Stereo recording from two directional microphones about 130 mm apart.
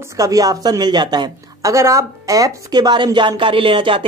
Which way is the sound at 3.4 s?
40° right (ahead or behind).